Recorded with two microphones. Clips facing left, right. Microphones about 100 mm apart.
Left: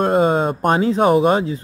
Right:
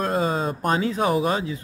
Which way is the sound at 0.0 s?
40° left (ahead or behind).